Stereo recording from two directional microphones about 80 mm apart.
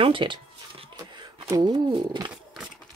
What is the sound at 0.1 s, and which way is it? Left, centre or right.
Speech, right.